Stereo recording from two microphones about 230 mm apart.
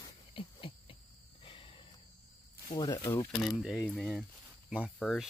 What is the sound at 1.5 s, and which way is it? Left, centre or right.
Cricket, left.